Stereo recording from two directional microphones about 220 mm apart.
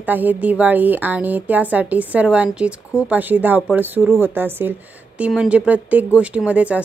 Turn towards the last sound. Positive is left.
turn(degrees=-5)  # may be behind; listen again after turning